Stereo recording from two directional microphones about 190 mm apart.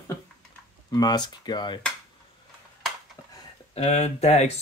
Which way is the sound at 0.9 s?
20° left (ahead or behind).